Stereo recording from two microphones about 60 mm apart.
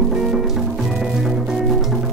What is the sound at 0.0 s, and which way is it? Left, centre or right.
Music, centre.